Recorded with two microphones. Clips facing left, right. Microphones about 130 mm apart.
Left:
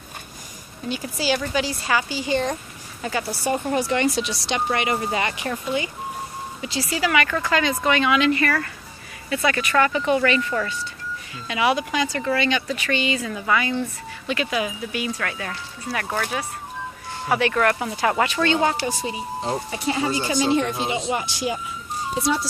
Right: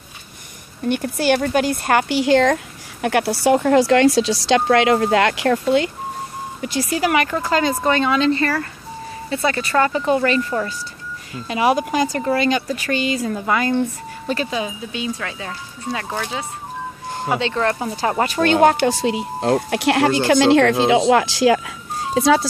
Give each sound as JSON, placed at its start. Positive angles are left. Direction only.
{"t": 0.8, "sound": "speech", "side_deg": -60}
{"t": 6.6, "sound": "speech", "side_deg": -50}
{"t": 7.2, "sound": "speech", "side_deg": -25}
{"t": 7.5, "sound": "speech", "side_deg": -35}
{"t": 18.4, "sound": "speech", "side_deg": -60}
{"t": 18.9, "sound": "speech", "side_deg": -80}